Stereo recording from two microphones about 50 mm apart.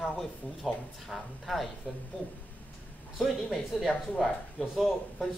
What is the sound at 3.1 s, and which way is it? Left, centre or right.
Speech, centre.